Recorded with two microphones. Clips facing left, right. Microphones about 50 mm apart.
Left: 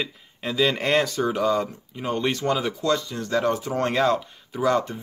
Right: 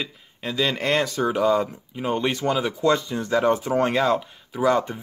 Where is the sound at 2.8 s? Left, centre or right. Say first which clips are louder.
Right 3 dB; right.